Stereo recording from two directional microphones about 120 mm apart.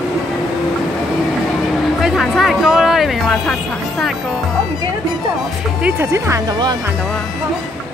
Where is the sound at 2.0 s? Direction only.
Centre (ahead or behind).